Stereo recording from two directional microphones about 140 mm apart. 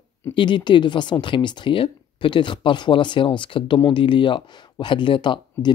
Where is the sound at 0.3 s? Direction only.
35° left (ahead or behind).